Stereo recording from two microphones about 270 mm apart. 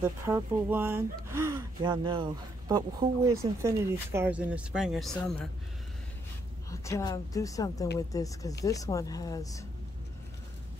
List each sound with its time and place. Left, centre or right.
0.0 s speech: centre
6.7 s a woman's voice: centre